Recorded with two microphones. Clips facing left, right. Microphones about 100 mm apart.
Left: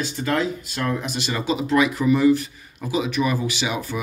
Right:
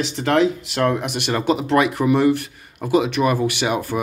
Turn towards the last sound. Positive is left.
turn(degrees=-55)  # may be behind; listen again after turning